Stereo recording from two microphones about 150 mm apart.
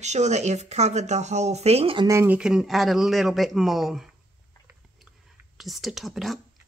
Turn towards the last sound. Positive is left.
turn(degrees=0)  # may be behind; listen again after turning